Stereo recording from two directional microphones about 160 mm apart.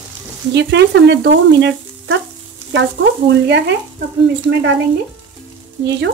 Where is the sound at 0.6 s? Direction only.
90° right.